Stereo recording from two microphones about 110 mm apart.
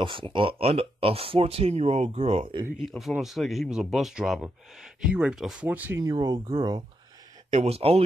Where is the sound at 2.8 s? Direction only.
Centre (ahead or behind).